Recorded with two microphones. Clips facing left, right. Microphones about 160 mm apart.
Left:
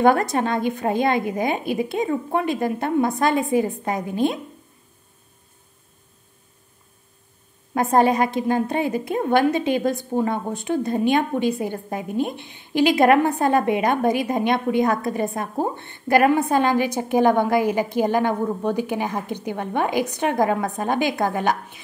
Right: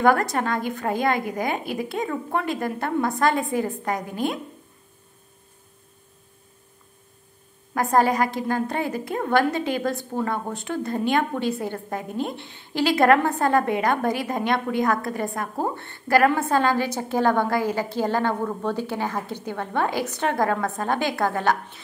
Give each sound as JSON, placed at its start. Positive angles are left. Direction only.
{"t": 0.0, "sound": "a woman's voice", "side_deg": 25}
{"t": 7.7, "sound": "a woman's voice", "side_deg": 25}